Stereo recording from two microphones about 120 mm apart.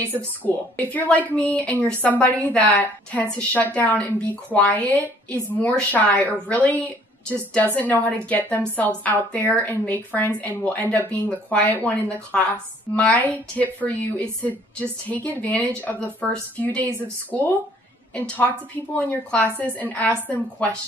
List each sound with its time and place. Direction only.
0.4 s a woman's voice: 15° left (ahead or behind)